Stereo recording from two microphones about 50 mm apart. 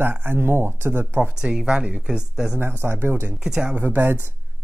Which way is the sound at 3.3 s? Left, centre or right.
Centre.